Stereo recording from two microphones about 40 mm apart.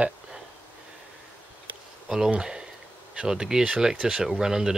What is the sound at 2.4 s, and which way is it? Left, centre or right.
Speech, centre.